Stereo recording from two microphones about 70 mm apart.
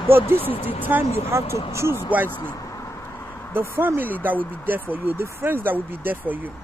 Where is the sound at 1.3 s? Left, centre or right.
Right.